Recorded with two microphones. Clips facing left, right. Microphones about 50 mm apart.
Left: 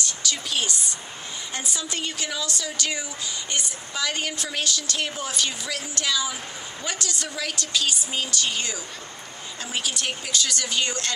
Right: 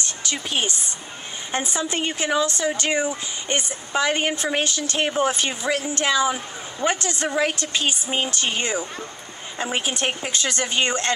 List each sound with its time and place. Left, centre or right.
0.0 s speech: right